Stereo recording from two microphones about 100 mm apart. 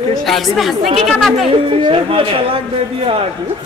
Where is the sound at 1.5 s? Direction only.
65° right (ahead or behind).